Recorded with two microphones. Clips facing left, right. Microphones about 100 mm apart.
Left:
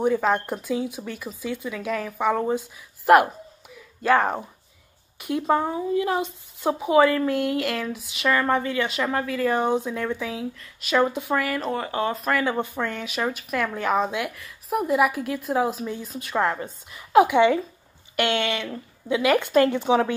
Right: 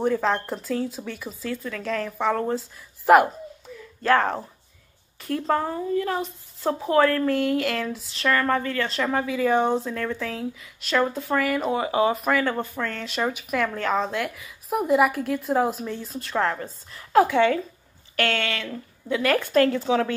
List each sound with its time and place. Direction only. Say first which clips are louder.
0.0 s speech: left 1 dB; 5° left (ahead or behind)
3.1 s a sound: even; 5° left (ahead or behind)
5.2 s speech: left 2 dB; 10° left (ahead or behind)
11.0 s speech: left 2 dB; 15° left (ahead or behind)
11.3 s speech: right 5 dB; centre (ahead or behind)
12.5 s speech: left 2 dB; 15° left (ahead or behind)